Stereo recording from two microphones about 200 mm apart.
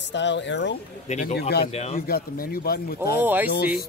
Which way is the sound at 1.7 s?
30° left (ahead or behind).